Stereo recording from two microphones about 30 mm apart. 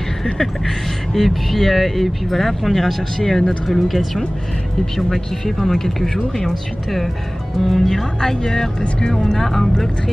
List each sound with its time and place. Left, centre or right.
0.2 s a sound: centre
1.2 s speech: centre
3.6 s speech: centre
4.9 s speech: centre